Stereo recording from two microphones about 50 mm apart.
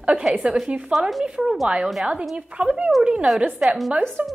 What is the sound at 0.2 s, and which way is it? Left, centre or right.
Speech, centre.